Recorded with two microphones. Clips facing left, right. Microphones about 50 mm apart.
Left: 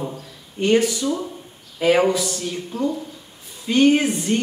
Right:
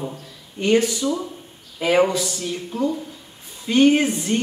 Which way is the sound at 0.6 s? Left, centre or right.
Centre.